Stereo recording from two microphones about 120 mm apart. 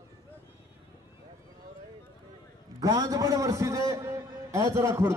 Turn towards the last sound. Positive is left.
turn(degrees=-25)  # may be behind; listen again after turning